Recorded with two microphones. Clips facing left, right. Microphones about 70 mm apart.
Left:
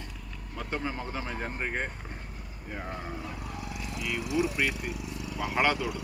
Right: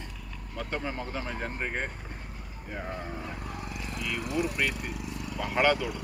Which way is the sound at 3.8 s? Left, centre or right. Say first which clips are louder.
Even; right.